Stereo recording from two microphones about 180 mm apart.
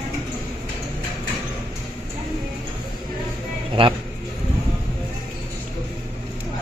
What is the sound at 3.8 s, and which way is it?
Speech, 30° right (ahead or behind).